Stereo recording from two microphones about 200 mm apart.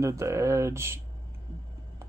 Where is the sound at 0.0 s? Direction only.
15° right (ahead or behind).